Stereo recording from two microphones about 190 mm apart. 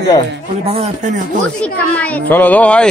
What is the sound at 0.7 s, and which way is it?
Speech, 35° right (ahead or behind).